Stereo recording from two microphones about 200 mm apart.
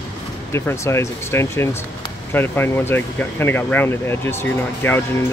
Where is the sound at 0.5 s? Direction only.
15° left (ahead or behind).